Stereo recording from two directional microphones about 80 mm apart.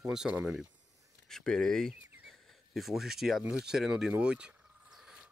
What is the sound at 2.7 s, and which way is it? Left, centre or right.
Speech, centre.